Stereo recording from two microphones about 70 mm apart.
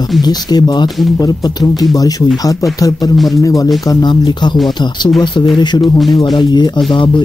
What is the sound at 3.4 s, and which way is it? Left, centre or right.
Music, left.